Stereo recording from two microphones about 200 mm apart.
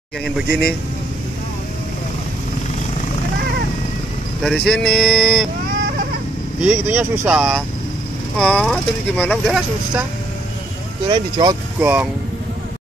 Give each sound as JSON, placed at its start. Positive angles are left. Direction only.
{"t": 0.5, "sound": "speech", "side_deg": 50}
{"t": 4.4, "sound": "speech", "side_deg": 0}
{"t": 6.6, "sound": "speech", "side_deg": -5}
{"t": 11.1, "sound": "speech", "side_deg": -20}
{"t": 11.8, "sound": "speech", "side_deg": -10}